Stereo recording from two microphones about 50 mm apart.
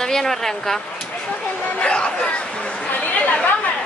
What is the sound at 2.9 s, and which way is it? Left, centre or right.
Chatter, left.